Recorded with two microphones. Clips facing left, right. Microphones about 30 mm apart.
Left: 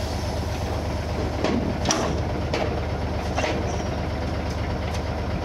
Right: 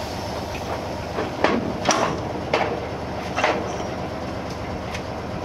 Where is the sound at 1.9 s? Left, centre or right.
Right.